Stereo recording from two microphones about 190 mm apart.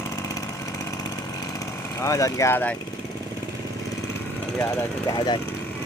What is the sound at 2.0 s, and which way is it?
Speech, 15° left (ahead or behind).